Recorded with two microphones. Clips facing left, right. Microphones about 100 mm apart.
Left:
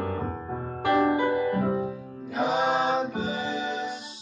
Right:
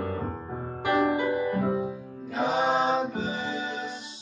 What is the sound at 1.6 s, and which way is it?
Music, 20° right (ahead or behind).